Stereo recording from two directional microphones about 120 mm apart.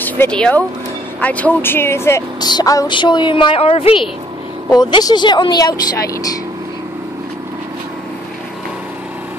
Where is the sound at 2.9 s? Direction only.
40° left (ahead or behind).